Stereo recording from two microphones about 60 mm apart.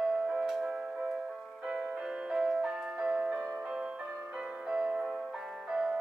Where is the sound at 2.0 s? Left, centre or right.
Centre.